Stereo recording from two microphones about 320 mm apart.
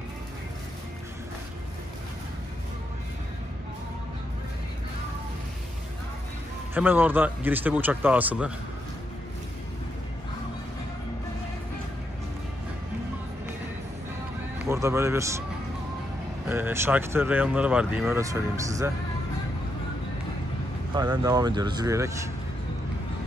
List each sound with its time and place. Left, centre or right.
6.7 s speech: centre
14.7 s speech: centre
16.4 s speech: centre
20.9 s speech: centre